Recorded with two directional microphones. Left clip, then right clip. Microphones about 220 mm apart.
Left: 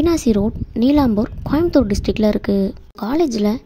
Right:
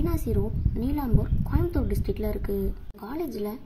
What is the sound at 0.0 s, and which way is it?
A woman's voice, 35° left (ahead or behind).